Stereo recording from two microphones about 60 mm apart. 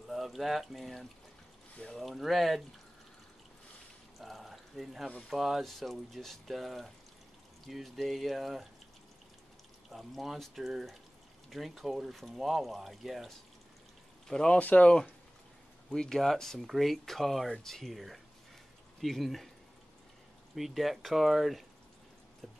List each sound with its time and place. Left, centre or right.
0.1 s speech: centre
4.2 s pour: centre
5.3 s speech: centre
9.8 s speech: centre
14.2 s speech: centre
14.6 s speech: left
15.9 s speech: centre
20.5 s speech: centre
22.4 s a sound: centre